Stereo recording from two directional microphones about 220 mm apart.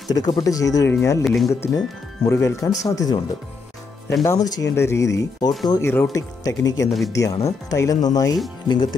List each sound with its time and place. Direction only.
0.1 s speech: 15° left (ahead or behind)
1.2 s speech: centre (ahead or behind)
1.5 s speech: 10° left (ahead or behind)
4.2 s speech: 15° left (ahead or behind)